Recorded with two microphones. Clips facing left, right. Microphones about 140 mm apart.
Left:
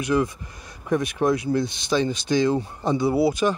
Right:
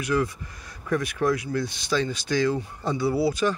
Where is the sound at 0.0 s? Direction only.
20° left (ahead or behind).